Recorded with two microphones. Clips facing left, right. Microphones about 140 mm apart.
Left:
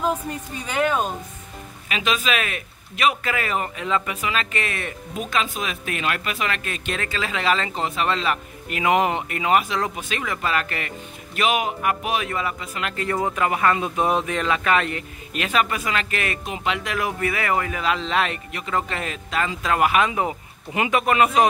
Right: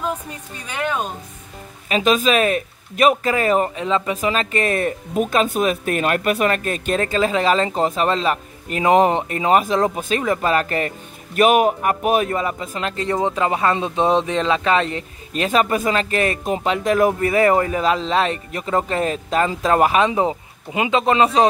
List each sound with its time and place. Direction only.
0.7 s speech: 5° left (ahead or behind)
1.9 s a man's voice: 40° right (ahead or behind)
11.3 s a man's voice: 45° right (ahead or behind); by 21.5 s 30° right (ahead or behind)